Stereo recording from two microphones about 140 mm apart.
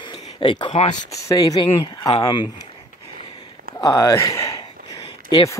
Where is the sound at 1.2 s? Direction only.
25° left (ahead or behind).